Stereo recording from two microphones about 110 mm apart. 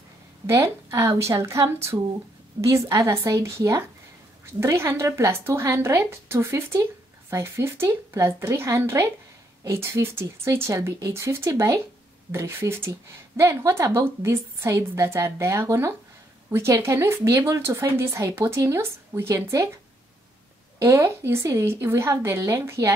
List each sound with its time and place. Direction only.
0.5 s a woman's voice: 25° right (ahead or behind)
20.8 s a woman's voice: 30° right (ahead or behind)